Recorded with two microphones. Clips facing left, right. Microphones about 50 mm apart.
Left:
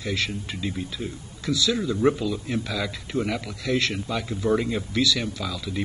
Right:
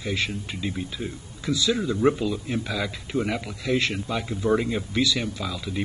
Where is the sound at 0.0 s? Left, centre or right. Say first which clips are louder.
Even; right.